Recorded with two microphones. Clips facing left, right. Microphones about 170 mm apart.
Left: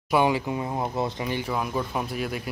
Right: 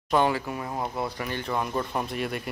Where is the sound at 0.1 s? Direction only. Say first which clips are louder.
Left 2 dB; 10° left (ahead or behind).